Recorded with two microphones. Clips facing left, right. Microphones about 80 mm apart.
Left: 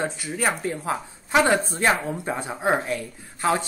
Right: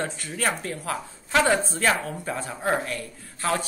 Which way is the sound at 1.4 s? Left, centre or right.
Centre.